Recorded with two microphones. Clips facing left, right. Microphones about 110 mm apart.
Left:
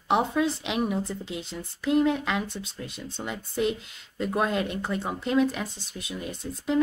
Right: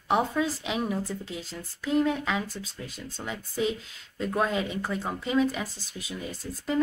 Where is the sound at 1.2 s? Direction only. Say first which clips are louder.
Left 2 dB; 70° left (ahead or behind).